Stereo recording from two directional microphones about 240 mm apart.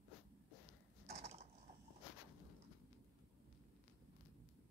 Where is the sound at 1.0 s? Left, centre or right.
Right.